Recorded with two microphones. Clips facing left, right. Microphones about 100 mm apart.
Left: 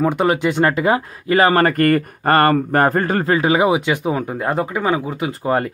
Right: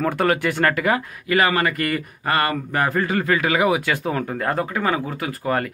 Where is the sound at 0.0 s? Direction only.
20° left (ahead or behind).